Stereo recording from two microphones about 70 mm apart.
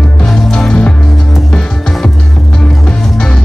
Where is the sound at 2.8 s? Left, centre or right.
Centre.